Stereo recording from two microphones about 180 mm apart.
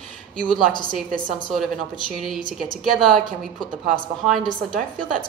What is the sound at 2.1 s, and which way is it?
A woman's voice, centre (ahead or behind).